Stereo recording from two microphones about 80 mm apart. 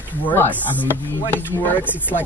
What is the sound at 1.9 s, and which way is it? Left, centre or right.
Speech, left.